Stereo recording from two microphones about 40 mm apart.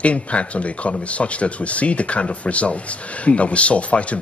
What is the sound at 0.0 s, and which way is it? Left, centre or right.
Speech, left.